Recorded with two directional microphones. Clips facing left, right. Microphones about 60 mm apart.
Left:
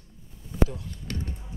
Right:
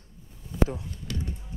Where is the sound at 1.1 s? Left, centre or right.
Left.